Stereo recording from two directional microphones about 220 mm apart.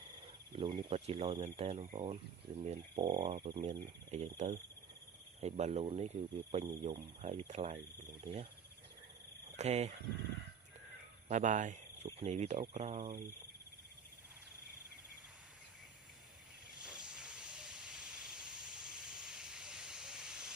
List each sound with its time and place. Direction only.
0.0 s speech: 20° right (ahead or behind)
9.6 s speech: 30° right (ahead or behind)
11.2 s speech: 35° right (ahead or behind)
16.8 s hiss: 5° right (ahead or behind)